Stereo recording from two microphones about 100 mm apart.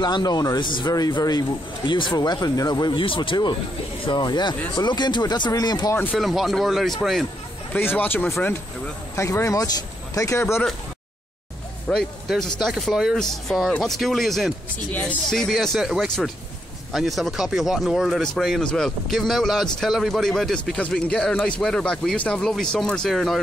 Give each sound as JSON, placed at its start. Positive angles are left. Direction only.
{"t": 0.0, "sound": "a man's voice", "side_deg": 45}
{"t": 1.9, "sound": "speech", "side_deg": 50}
{"t": 6.1, "sound": "speech", "side_deg": 0}
{"t": 7.7, "sound": "speech", "side_deg": 20}
{"t": 9.1, "sound": "speech", "side_deg": 30}
{"t": 11.9, "sound": "speech", "side_deg": 5}
{"t": 14.9, "sound": "speech", "side_deg": 15}
{"t": 15.2, "sound": "speech", "side_deg": 5}